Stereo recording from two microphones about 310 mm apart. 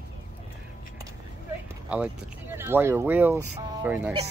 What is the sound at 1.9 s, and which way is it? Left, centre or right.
Speech, centre.